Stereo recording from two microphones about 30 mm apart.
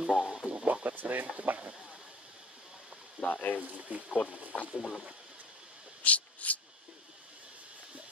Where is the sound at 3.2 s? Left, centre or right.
Left.